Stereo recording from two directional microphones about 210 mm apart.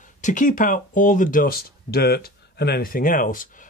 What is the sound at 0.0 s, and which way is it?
Speech, 35° left (ahead or behind).